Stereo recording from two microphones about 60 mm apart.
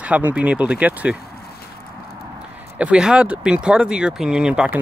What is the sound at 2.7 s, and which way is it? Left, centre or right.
Speech, centre.